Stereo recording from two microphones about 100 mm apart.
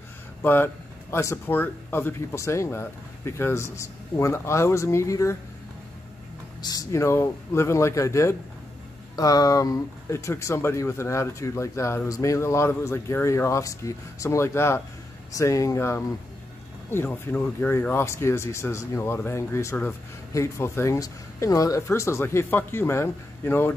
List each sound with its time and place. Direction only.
0.4 s speech: 20° left (ahead or behind)
6.6 s speech: 35° left (ahead or behind)